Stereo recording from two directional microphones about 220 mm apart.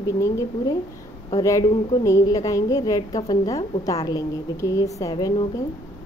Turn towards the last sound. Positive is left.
turn(degrees=15)  # may be behind; listen again after turning